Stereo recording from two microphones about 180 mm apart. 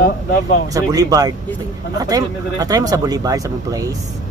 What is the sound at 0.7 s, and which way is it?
Speech, 20° right (ahead or behind).